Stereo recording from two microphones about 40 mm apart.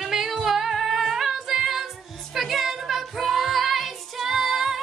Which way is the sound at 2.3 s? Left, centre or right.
Centre.